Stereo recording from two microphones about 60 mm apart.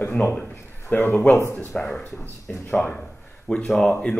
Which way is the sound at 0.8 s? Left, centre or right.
Left.